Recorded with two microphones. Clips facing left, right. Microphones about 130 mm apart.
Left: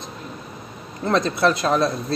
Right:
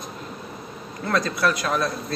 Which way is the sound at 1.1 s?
25° left (ahead or behind).